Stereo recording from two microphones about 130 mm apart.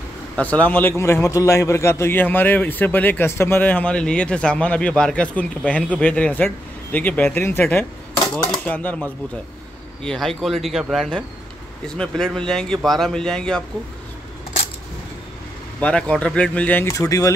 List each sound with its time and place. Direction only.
0.4 s a man's voice: 10° left (ahead or behind)
15.8 s a man's voice: 5° left (ahead or behind)
16.8 s speech: 25° left (ahead or behind)